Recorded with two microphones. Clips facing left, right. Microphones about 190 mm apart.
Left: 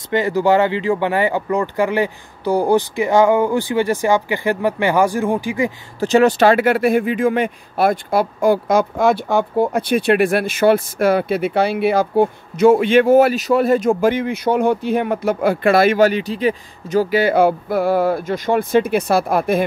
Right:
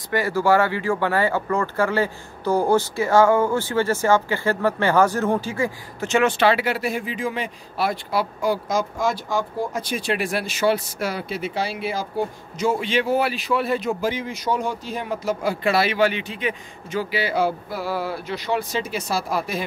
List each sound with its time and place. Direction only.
0.1 s speech: 20° left (ahead or behind)
5.9 s speech: 35° left (ahead or behind); by 19.6 s 55° left (ahead or behind)